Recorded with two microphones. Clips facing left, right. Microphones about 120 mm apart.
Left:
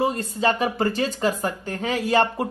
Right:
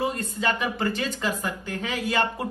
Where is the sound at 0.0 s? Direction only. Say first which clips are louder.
Left 4 dB; 35° left (ahead or behind).